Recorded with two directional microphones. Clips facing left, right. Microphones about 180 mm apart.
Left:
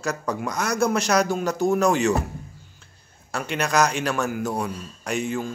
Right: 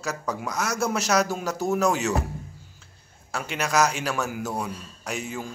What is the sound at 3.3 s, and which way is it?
A man's voice, 5° right (ahead or behind).